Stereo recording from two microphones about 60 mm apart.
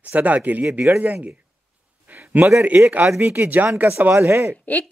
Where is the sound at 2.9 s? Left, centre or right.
Right.